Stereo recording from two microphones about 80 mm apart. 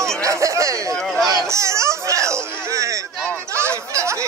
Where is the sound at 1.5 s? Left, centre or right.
Right.